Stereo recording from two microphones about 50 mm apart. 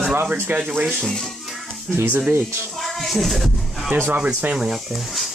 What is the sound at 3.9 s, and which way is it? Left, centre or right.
Speech, right.